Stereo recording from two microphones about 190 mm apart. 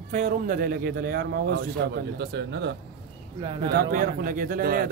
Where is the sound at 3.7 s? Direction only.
50° right (ahead or behind).